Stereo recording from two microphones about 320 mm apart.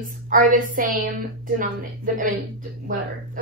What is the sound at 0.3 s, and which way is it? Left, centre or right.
Speech, right.